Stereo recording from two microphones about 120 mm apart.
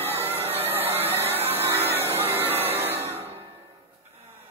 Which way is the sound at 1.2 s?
55° right (ahead or behind).